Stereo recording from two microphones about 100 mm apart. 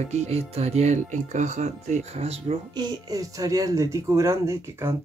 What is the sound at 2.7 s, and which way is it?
Speech, 40° right (ahead or behind).